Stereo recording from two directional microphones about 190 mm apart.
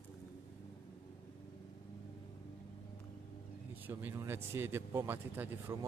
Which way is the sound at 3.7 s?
10° right (ahead or behind).